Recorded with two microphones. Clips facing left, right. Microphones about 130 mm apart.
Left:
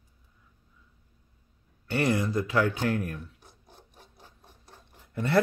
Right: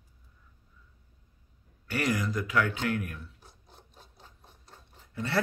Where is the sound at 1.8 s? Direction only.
30° left (ahead or behind).